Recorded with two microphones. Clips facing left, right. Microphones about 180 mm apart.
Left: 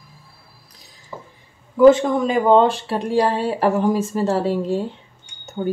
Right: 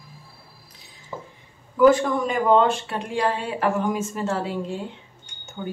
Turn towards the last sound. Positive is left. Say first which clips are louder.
# left 9 dB
turn(degrees=40)  # may be behind; listen again after turning